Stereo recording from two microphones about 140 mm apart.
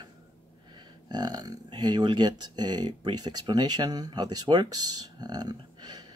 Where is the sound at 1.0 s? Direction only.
30° right (ahead or behind).